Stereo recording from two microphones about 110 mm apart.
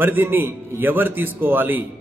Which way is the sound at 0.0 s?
20° right (ahead or behind).